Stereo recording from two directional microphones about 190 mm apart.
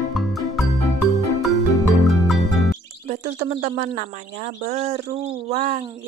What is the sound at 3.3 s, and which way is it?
Speech, 40° right (ahead or behind).